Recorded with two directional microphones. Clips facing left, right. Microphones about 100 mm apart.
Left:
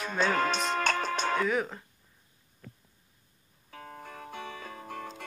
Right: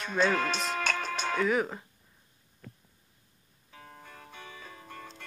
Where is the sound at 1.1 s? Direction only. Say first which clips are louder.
Even; centre (ahead or behind).